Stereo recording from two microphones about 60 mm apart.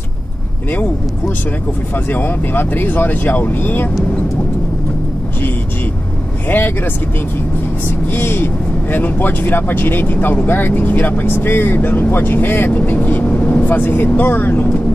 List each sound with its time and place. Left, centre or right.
2.0 s speech: left
8.1 s speech: left